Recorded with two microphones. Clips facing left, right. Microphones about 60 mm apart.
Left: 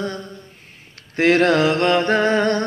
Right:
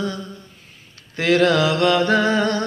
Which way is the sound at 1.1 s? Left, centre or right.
Left.